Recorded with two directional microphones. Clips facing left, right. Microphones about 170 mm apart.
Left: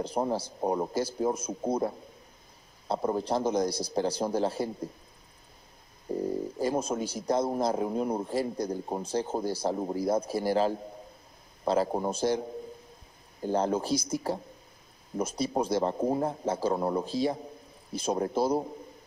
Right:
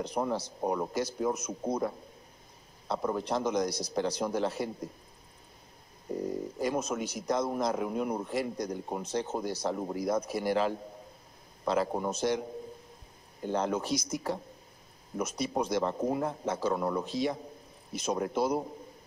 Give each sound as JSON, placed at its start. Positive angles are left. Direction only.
{"t": 0.0, "sound": "a man's voice", "side_deg": 30}
{"t": 6.1, "sound": "a man's voice", "side_deg": 30}
{"t": 13.4, "sound": "a man's voice", "side_deg": 35}